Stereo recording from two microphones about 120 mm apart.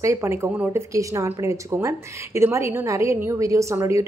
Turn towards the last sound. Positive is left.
turn(degrees=-25)  # may be behind; listen again after turning